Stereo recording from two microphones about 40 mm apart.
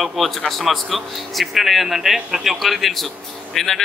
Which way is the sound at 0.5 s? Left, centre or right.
Centre.